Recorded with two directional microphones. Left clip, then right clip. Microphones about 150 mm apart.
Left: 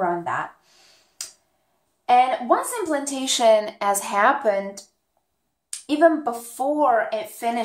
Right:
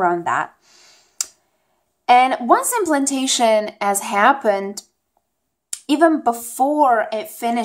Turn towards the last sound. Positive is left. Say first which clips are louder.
# right 3 dB
turn(degrees=-30)  # may be behind; listen again after turning